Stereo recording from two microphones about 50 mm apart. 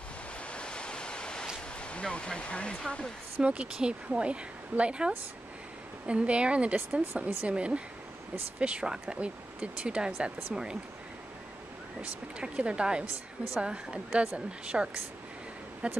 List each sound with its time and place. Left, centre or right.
0.5 s waves: centre
1.8 s speech: left
3.3 s speech: right
3.6 s speech: centre
12.4 s speech: right